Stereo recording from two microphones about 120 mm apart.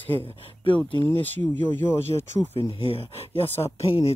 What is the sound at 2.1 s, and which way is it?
Speech, 40° left (ahead or behind).